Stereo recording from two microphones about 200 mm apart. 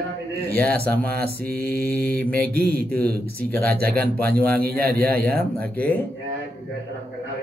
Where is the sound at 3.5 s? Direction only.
10° left (ahead or behind).